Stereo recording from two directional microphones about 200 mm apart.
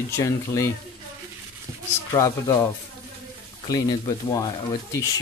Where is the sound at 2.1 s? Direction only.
15° left (ahead or behind).